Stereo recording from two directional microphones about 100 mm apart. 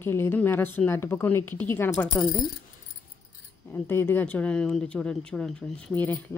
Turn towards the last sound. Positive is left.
turn(degrees=15)  # may be behind; listen again after turning